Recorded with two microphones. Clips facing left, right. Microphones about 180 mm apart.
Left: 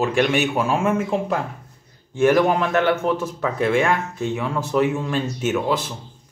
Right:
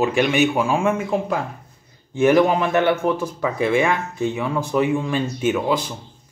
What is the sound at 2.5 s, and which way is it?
Speech, 15° right (ahead or behind).